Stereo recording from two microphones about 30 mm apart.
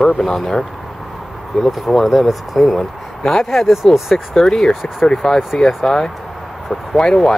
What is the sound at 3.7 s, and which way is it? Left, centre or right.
Speech, centre.